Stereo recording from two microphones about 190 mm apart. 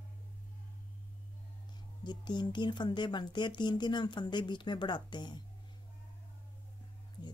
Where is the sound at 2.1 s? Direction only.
25° left (ahead or behind).